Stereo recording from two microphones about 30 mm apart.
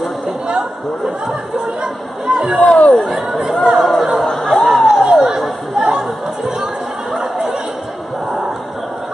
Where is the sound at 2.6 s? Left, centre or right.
Left.